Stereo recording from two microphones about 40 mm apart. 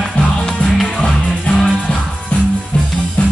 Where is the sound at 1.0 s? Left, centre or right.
Centre.